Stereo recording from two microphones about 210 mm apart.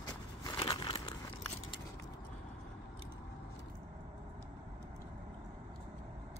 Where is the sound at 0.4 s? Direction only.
20° left (ahead or behind).